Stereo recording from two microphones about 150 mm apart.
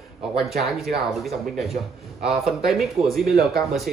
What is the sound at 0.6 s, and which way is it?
Speech, centre (ahead or behind).